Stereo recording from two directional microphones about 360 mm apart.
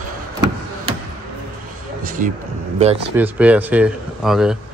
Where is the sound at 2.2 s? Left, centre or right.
Right.